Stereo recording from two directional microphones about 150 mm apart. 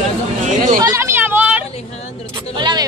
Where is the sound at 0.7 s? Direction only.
20° right (ahead or behind).